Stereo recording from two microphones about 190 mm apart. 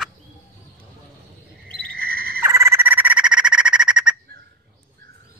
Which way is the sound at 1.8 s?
55° right (ahead or behind).